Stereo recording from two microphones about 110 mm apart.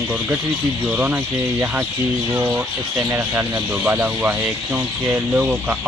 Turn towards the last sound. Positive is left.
turn(degrees=-15)  # may be behind; listen again after turning